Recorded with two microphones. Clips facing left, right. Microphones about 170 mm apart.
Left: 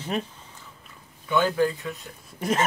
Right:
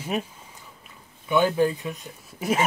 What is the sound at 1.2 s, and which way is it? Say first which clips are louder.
Speech: right 2 dB; 20° right (ahead or behind).